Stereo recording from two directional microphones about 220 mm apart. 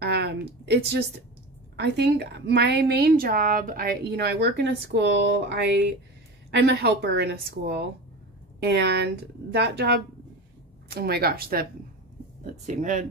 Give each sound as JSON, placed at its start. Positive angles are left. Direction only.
{"t": 0.0, "sound": "a woman's voice", "side_deg": -45}